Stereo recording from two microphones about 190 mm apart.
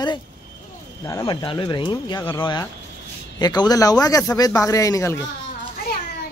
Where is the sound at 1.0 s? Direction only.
20° left (ahead or behind).